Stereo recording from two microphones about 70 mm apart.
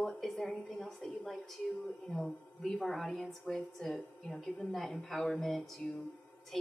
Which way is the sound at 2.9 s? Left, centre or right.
Centre.